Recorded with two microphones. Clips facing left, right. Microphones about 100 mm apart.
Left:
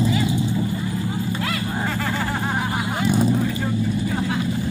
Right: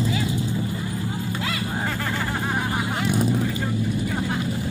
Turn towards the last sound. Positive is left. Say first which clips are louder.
# left 3 dB
turn(degrees=-5)  # may be behind; listen again after turning